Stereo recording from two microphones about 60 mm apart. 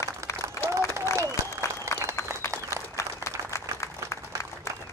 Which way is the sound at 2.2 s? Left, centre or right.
Left.